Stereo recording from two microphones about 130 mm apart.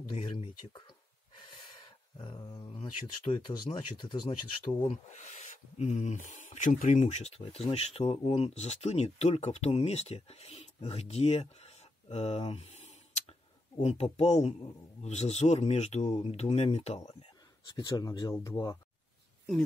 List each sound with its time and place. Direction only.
0.1 s speech: 40° left (ahead or behind)
2.1 s speech: 35° left (ahead or behind)
5.1 s speech: 65° left (ahead or behind)
17.6 s speech: 30° left (ahead or behind)
18.3 s speech: 25° left (ahead or behind)